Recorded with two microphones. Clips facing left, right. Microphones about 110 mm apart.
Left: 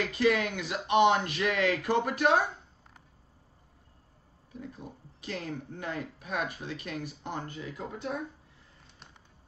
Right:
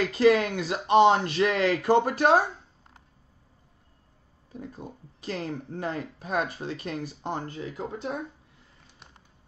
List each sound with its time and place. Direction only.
0.2 s speech: 35° right (ahead or behind)
4.5 s speech: 35° right (ahead or behind)